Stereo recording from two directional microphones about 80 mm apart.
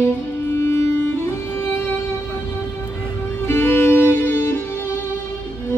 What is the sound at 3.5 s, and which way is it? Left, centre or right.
Music, left.